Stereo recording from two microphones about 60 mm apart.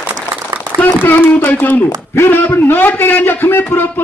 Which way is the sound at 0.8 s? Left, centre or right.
Left.